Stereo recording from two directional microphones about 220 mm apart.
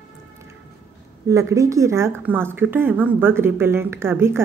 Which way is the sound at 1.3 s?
15° right (ahead or behind).